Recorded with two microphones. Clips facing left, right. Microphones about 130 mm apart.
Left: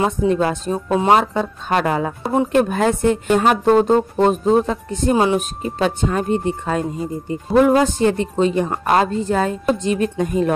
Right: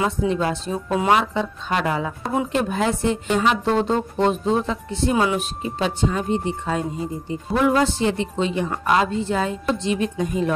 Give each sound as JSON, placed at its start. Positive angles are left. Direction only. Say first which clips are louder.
{"t": 0.3, "sound": "speech", "louder": "left 4 dB", "side_deg": 50}
{"t": 0.9, "sound": "speech", "louder": "left 4 dB", "side_deg": 30}
{"t": 1.3, "sound": "speech", "louder": "left 4 dB", "side_deg": 45}
{"t": 5.1, "sound": "speech", "louder": "left 5 dB", "side_deg": 30}
{"t": 5.6, "sound": "speech", "louder": "left 3 dB", "side_deg": 50}